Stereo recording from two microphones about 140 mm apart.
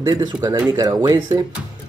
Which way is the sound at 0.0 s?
30° right (ahead or behind).